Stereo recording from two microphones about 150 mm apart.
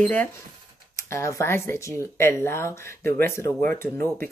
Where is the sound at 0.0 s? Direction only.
10° left (ahead or behind).